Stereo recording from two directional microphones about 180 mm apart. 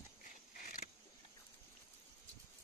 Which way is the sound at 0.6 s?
50° left (ahead or behind).